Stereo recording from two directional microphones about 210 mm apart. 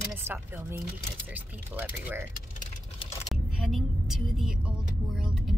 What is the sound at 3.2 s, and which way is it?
Vehicle, centre (ahead or behind).